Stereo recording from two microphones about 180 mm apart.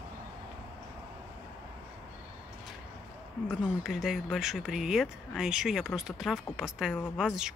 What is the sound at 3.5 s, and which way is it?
Speech, centre (ahead or behind).